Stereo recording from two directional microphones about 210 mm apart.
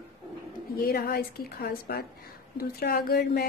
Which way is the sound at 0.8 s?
45° left (ahead or behind).